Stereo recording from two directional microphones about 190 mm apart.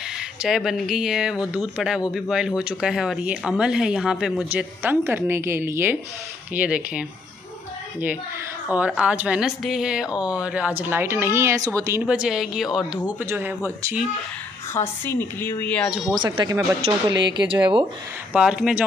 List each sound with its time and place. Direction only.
0.4 s speech: centre (ahead or behind)
8.6 s speech: 5° right (ahead or behind)
10.1 s speech: 20° left (ahead or behind)
10.4 s speech: 5° right (ahead or behind)
12.1 s speech: 5° right (ahead or behind)
14.7 s a woman's voice: 10° left (ahead or behind)
16.2 s speech: 20° right (ahead or behind)
18.3 s speech: 5° right (ahead or behind)